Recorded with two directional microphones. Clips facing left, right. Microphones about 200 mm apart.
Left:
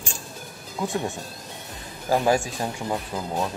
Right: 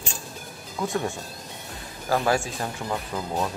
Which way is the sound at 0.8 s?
15° left (ahead or behind).